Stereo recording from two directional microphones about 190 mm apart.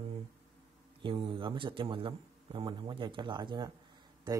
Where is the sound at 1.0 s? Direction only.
25° right (ahead or behind).